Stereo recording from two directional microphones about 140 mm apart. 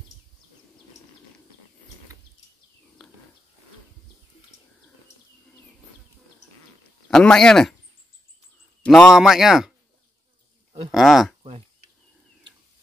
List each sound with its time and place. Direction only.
3.0 s livestock: 5° left (ahead or behind)
7.1 s speech: 5° left (ahead or behind)
8.8 s a man's voice: 5° left (ahead or behind)
10.9 s speech: centre (ahead or behind)